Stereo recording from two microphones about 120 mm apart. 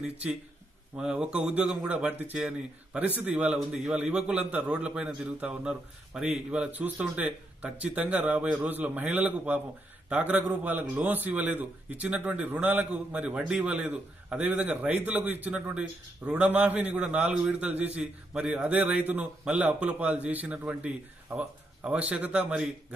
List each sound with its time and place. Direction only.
0.0 s a man's voice: 10° right (ahead or behind)